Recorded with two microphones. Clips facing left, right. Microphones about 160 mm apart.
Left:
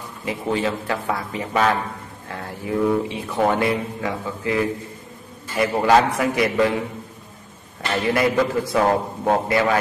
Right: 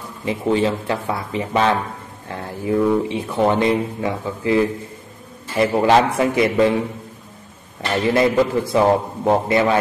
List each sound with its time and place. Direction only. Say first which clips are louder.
0.2 s speech: right 4 dB; 25° right (ahead or behind)
8.1 s speech: right 3 dB; 25° right (ahead or behind)